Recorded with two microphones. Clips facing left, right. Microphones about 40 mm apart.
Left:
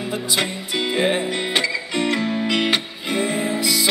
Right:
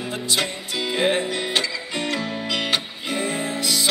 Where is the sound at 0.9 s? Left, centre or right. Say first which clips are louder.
Even; centre.